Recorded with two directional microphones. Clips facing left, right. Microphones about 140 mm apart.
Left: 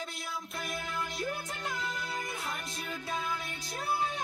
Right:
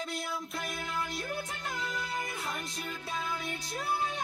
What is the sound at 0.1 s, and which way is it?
Music, centre (ahead or behind).